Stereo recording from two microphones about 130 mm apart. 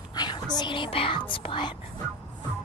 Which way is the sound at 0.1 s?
30° left (ahead or behind).